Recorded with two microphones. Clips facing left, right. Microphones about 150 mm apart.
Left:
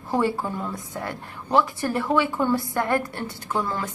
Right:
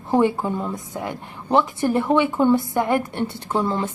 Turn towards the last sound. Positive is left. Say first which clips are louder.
# right 4 dB
turn(degrees=-25)  # may be behind; listen again after turning